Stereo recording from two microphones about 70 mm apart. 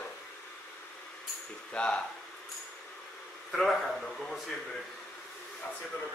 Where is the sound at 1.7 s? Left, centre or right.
Centre.